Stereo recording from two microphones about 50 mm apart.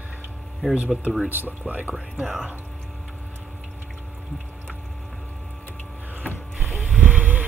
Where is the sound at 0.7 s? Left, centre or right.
Right.